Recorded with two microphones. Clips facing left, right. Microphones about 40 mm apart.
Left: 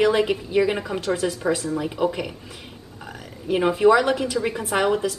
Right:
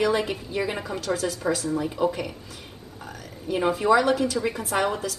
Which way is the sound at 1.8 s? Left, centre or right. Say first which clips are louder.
Left 1 dB; left.